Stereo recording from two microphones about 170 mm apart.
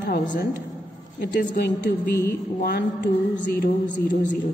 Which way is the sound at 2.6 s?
70° left (ahead or behind).